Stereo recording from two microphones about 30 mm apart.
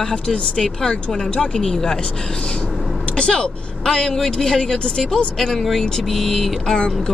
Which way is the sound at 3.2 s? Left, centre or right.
Left.